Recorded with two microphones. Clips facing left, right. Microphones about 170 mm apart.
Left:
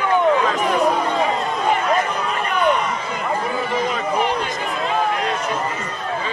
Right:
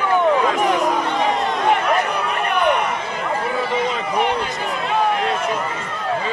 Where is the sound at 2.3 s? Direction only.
60° right (ahead or behind).